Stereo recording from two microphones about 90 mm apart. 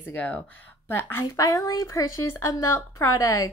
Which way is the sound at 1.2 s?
40° left (ahead or behind).